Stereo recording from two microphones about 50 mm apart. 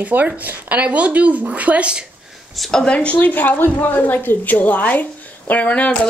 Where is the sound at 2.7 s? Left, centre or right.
Centre.